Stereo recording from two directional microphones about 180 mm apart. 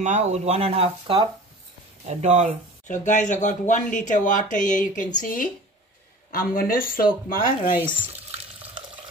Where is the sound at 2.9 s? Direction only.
40° left (ahead or behind).